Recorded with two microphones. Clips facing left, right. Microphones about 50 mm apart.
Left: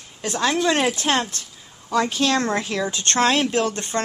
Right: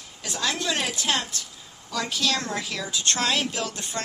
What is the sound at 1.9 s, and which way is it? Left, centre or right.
Speech, left.